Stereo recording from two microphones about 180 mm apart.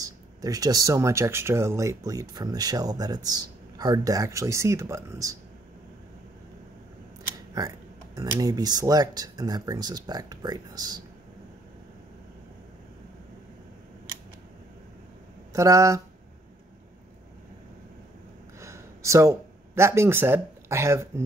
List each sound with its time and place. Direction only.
0.0 s speech: 20° right (ahead or behind)
8.2 s speech: 20° right (ahead or behind)
15.5 s speech: 15° right (ahead or behind)
18.6 s speech: 15° right (ahead or behind)